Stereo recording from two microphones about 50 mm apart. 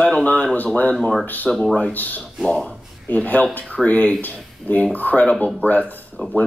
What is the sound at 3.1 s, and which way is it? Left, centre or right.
Speech, left.